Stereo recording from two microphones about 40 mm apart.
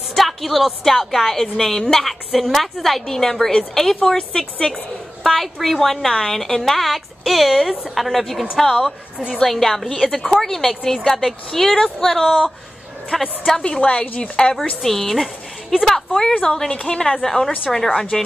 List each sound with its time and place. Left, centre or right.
0.1 s a woman's voice: centre
5.2 s a woman's voice: centre
10.0 s a woman's voice: centre
10.3 s speech: centre
13.7 s a woman's voice: left
14.8 s a woman's voice: centre
16.1 s a woman's voice: centre